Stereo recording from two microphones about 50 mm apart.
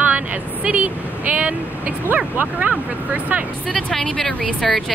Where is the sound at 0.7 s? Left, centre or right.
Right.